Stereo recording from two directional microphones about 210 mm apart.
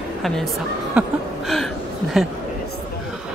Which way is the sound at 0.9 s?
Centre (ahead or behind).